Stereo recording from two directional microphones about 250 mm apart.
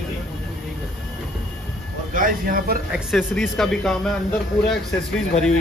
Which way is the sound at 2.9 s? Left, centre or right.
Centre.